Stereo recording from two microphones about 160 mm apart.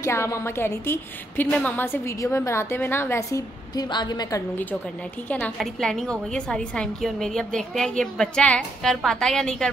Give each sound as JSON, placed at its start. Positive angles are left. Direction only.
{"t": 0.0, "sound": "a woman's voice", "side_deg": 15}
{"t": 5.3, "sound": "a woman's voice", "side_deg": 5}